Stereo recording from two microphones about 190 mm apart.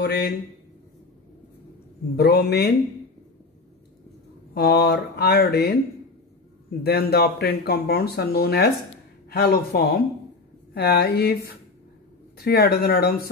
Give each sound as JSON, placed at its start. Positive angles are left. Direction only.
{"t": 0.0, "sound": "speech", "side_deg": 60}
{"t": 2.1, "sound": "speech", "side_deg": 60}
{"t": 4.6, "sound": "speech", "side_deg": 55}
{"t": 6.8, "sound": "speech", "side_deg": 55}